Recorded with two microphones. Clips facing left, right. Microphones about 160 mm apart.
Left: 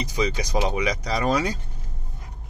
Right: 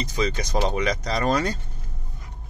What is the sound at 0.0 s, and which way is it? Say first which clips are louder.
Speech: even; 15° left (ahead or behind).